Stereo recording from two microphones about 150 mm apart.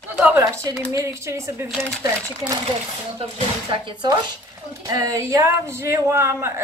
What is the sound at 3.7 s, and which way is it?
Speech, 30° right (ahead or behind).